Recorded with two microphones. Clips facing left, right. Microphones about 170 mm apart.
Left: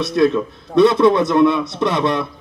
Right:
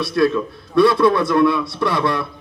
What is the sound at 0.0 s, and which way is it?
A man's voice, 20° left (ahead or behind).